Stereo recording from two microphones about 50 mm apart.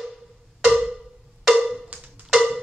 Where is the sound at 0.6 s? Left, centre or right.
Centre.